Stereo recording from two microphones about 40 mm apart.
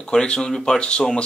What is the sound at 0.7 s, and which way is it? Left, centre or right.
Speech, left.